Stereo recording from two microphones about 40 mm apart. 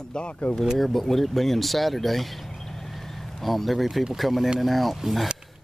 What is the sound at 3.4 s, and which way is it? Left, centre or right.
Speech, centre.